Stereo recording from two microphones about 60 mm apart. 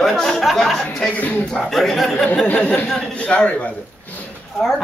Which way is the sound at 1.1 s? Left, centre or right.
Left.